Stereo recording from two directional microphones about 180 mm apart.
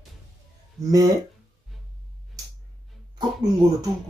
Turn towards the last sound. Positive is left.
turn(degrees=-20)  # may be behind; listen again after turning